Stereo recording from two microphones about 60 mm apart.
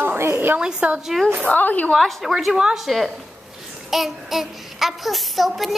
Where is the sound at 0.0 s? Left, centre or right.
Right.